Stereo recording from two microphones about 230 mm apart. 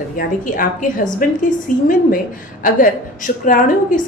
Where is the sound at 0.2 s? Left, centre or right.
Left.